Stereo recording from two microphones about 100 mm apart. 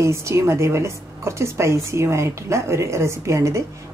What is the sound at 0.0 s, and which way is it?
A woman's voice, 30° right (ahead or behind).